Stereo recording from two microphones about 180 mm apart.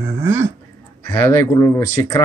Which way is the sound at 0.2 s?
15° right (ahead or behind).